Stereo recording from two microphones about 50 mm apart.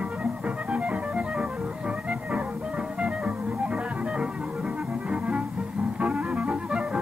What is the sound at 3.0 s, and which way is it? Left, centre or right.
Music, right.